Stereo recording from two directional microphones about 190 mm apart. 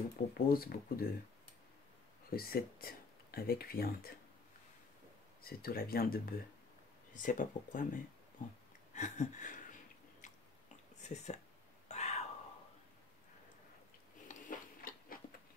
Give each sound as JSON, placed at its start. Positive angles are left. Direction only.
{"t": 0.3, "sound": "speech", "side_deg": 50}
{"t": 2.2, "sound": "speech", "side_deg": 50}
{"t": 5.4, "sound": "speech", "side_deg": 50}
{"t": 8.9, "sound": "a sound", "side_deg": 40}
{"t": 11.0, "sound": "speech", "side_deg": 35}
{"t": 11.9, "sound": "whispering", "side_deg": 35}
{"t": 14.2, "sound": "a sound", "side_deg": 45}